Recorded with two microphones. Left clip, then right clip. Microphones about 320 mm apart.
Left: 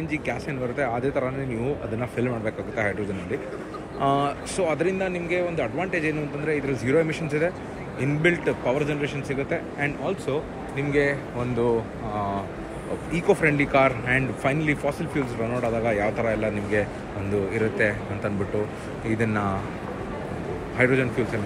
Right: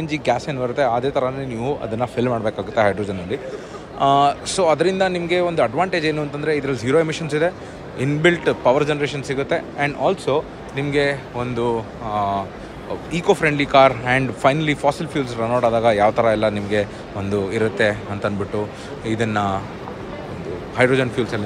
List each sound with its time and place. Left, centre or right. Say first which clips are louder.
0.0 s a man's voice: right 8 dB; centre
20.7 s a man's voice: right 5 dB; centre